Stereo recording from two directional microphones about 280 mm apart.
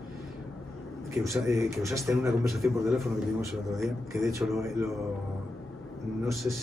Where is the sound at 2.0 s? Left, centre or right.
Centre.